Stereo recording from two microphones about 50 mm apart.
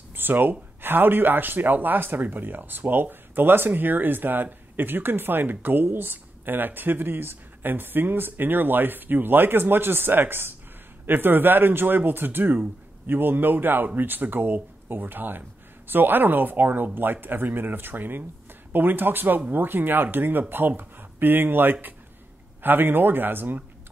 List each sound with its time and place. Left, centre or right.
0.1 s speech: right